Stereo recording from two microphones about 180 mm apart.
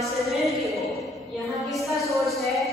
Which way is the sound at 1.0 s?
Centre (ahead or behind).